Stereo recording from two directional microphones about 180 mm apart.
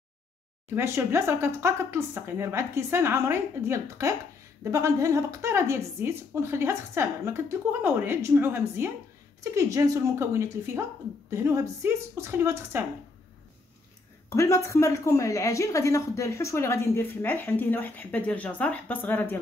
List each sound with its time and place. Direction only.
0.7 s a woman's voice: 15° right (ahead or behind)
14.3 s a woman's voice: 15° left (ahead or behind)